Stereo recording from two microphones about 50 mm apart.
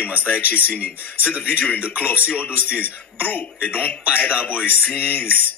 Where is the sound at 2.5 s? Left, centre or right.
Right.